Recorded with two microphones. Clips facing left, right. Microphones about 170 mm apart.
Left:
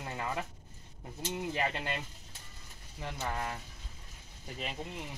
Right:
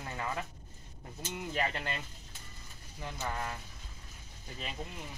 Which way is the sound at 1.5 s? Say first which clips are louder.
Right 1 dB; 15° left (ahead or behind).